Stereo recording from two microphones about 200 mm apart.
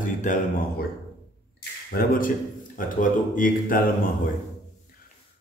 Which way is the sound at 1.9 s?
45° left (ahead or behind).